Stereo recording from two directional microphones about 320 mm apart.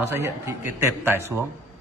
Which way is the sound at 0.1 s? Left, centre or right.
Centre.